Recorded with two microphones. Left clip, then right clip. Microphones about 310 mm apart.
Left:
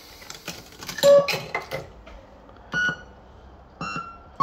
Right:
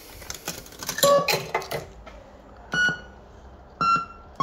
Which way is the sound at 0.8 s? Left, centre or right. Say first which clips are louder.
Left 3 dB; centre.